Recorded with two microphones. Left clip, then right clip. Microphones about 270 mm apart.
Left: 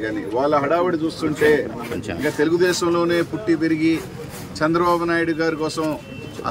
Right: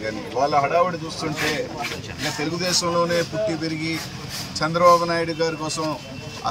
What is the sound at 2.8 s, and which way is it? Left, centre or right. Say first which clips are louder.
Speech: left 2 dB; centre.